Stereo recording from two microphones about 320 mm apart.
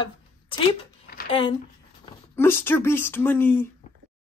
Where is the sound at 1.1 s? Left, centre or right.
Left.